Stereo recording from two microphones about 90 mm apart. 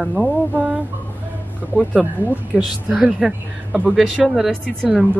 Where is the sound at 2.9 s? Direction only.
5° right (ahead or behind).